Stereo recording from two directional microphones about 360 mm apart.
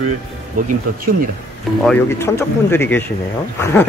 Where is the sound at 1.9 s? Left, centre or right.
Centre.